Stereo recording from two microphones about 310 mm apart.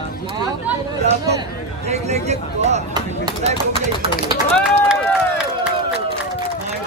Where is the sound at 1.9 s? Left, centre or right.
Right.